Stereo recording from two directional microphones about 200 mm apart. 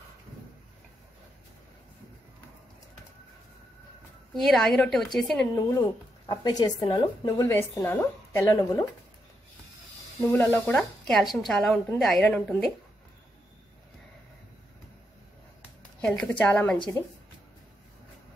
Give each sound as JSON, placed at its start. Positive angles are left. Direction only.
{"t": 4.4, "sound": "a woman's voice", "side_deg": 0}
{"t": 5.5, "sound": "speech", "side_deg": 20}
{"t": 10.3, "sound": "a woman's voice", "side_deg": 10}
{"t": 16.0, "sound": "a woman's voice", "side_deg": 5}